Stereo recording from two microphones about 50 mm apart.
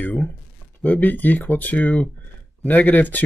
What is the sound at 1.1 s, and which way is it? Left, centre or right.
Speech, left.